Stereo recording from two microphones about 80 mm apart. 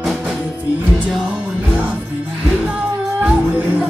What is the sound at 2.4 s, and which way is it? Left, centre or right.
Music, centre.